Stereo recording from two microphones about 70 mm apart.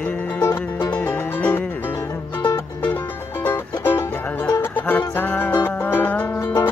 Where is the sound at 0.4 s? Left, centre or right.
Left.